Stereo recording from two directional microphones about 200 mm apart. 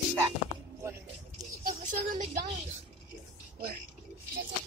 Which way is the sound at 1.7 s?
40° right (ahead or behind).